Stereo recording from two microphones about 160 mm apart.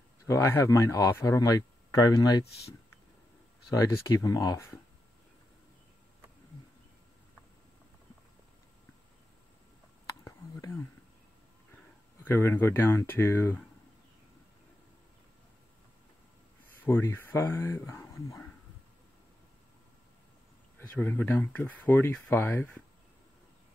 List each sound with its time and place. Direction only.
0.3 s speech: 15° left (ahead or behind)
2.4 s speech: 90° left
3.7 s speech: 20° left (ahead or behind)
10.2 s a sound: 20° left (ahead or behind)
12.2 s speech: 15° left (ahead or behind)
16.7 s speech: 15° left (ahead or behind)
20.9 s speech: 10° left (ahead or behind)